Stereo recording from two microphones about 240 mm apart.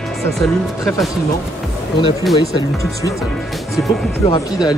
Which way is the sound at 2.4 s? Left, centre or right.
Centre.